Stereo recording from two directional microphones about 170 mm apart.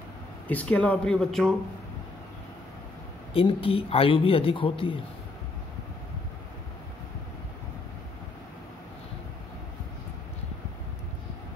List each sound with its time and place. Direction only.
0.5 s speech: 10° left (ahead or behind)
3.3 s speech: 35° left (ahead or behind)